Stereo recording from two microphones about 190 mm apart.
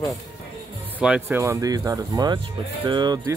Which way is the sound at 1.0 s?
10° right (ahead or behind).